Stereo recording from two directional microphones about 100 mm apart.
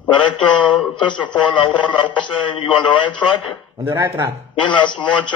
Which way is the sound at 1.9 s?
55° left (ahead or behind).